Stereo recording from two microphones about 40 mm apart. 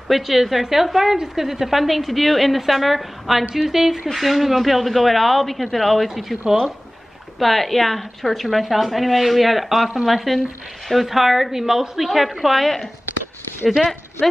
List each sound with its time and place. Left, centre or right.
0.1 s a woman's voice: centre
7.3 s a woman's voice: centre